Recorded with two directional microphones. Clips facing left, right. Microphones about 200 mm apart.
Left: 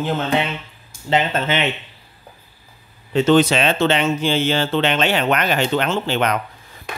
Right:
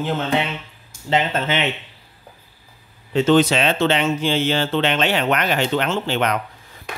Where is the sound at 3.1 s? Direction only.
55° left (ahead or behind).